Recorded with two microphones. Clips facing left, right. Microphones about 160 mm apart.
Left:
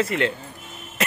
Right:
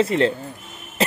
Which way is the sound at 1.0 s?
30° right (ahead or behind).